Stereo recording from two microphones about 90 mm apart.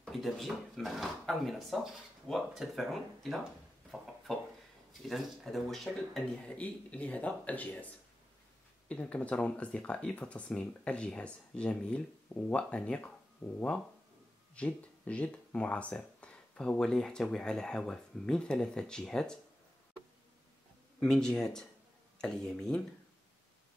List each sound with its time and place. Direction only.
0.0 s speech: centre (ahead or behind)
6.4 s speech: 15° left (ahead or behind)
21.0 s speech: 10° left (ahead or behind)